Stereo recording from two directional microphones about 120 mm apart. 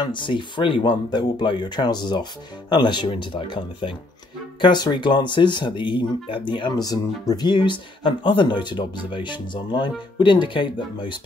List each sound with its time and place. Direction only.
0.0 s speech: 40° left (ahead or behind)